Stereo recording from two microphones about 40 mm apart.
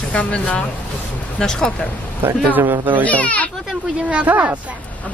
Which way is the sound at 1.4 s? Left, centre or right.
Centre.